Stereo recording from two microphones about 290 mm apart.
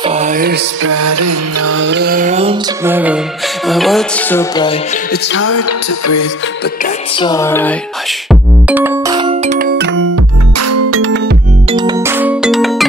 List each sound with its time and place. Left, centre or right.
0.0 s music: right
0.9 s music: right
1.7 s music: right
2.8 s music: centre
5.1 s music: left
7.2 s music: centre
8.3 s music: centre; by 9.8 s right
10.1 s music: right
11.7 s music: centre